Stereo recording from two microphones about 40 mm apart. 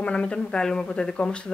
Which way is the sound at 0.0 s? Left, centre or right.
Left.